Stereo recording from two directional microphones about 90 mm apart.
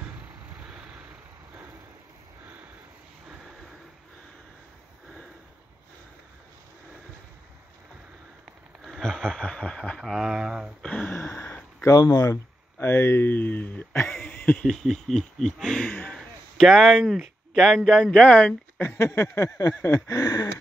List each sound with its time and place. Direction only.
0.6 s vehicle: 15° right (ahead or behind)
8.8 s a sound: 5° left (ahead or behind)
9.9 s speech: 5° right (ahead or behind)
10.8 s speech: 10° left (ahead or behind)
11.1 s a sound: 30° left (ahead or behind)
11.8 s speech: 40° left (ahead or behind)
12.3 s speech: 25° left (ahead or behind)
14.3 s a sound: 20° left (ahead or behind)
14.6 s speech: 5° left (ahead or behind)
15.9 s speech: 15° left (ahead or behind)
16.2 s speech: 5° left (ahead or behind); by 19.7 s 35° left (ahead or behind)
19.8 s a sound: 35° left (ahead or behind)